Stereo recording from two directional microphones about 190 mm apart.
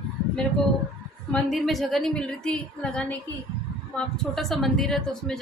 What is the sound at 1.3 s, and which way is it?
A woman's voice, centre (ahead or behind).